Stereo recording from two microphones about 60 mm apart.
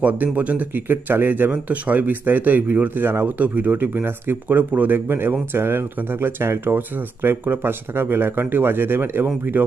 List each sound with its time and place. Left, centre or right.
0.0 s speech: right